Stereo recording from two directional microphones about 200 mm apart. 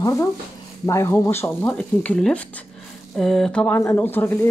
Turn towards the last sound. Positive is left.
turn(degrees=10)  # may be behind; listen again after turning